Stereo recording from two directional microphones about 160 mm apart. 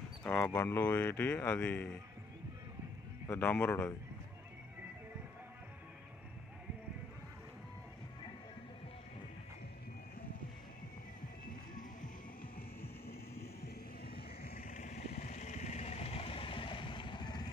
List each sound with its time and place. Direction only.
0.2 s a sound: 10° left (ahead or behind)
0.5 s speech: 15° left (ahead or behind)
3.3 s speech: 10° left (ahead or behind)
13.6 s vehicle: 75° left (ahead or behind); by 17.5 s 25° left (ahead or behind)